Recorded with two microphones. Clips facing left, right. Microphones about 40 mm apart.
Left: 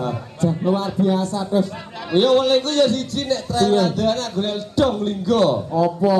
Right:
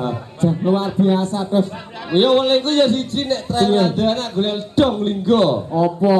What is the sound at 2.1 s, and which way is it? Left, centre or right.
A man's voice, right.